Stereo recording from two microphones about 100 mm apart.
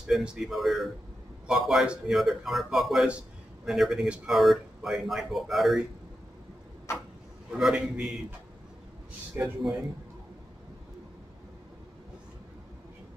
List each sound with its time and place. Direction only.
0.0 s a man's voice: 10° right (ahead or behind)
7.5 s a man's voice: 10° right (ahead or behind)
9.4 s a man's voice: 5° right (ahead or behind)